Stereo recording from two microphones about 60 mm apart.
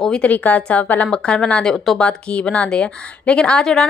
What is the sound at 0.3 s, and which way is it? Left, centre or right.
Speech, left.